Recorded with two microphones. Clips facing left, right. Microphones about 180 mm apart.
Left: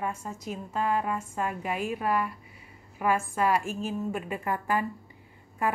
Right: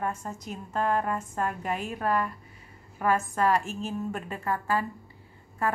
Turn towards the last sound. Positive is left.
turn(degrees=15)  # may be behind; listen again after turning